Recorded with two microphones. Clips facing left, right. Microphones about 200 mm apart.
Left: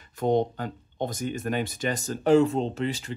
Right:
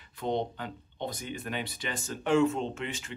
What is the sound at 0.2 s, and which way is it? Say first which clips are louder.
Speech: left 7 dB; 45° left (ahead or behind).